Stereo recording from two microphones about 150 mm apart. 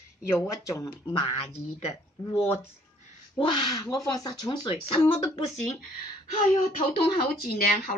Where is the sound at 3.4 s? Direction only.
30° left (ahead or behind).